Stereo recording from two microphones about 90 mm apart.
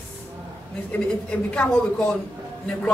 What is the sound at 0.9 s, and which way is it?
A woman's voice, 15° left (ahead or behind).